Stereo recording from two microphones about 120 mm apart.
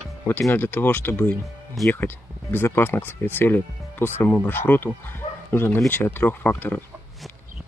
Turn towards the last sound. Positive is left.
turn(degrees=15)  # may be behind; listen again after turning